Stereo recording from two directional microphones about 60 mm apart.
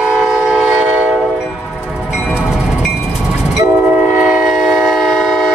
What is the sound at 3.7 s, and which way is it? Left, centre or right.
Train, right.